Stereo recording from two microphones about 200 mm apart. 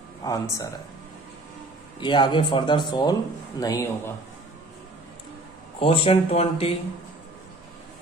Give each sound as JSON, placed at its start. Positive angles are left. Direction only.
{"t": 0.2, "sound": "speech", "side_deg": 15}
{"t": 2.0, "sound": "speech", "side_deg": 20}
{"t": 5.8, "sound": "speech", "side_deg": 30}